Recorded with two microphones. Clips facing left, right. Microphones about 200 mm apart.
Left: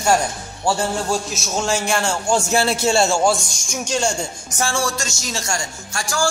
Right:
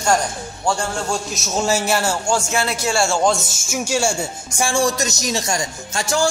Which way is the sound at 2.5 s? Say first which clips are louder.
Left 3 dB; 30° left (ahead or behind).